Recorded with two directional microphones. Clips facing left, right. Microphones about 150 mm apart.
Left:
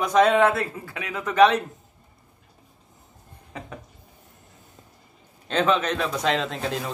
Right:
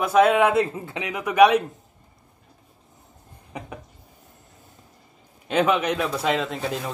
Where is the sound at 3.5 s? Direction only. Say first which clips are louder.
Right 2 dB; 15° right (ahead or behind).